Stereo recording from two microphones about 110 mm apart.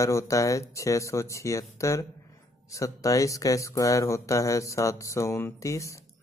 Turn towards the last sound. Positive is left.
turn(degrees=30)  # may be behind; listen again after turning